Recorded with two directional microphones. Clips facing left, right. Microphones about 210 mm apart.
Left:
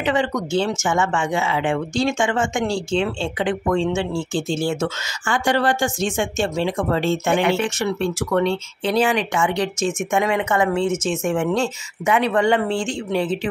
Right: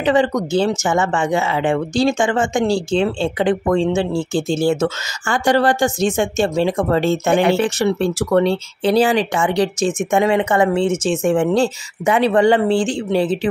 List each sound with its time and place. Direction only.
0.0 s speech: 35° right (ahead or behind)